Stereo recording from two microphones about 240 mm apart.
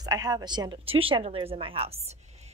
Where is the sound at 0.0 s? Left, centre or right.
Centre.